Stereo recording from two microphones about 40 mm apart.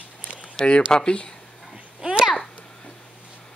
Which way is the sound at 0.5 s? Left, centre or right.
Left.